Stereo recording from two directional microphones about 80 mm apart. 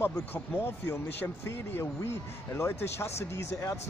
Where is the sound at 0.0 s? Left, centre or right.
Left.